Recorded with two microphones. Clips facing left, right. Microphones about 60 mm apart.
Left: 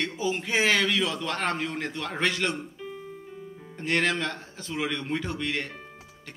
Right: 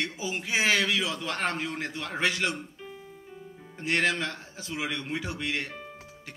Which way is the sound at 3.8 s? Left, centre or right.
Centre.